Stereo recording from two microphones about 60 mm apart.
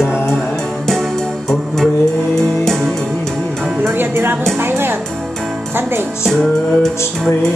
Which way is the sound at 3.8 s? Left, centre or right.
Right.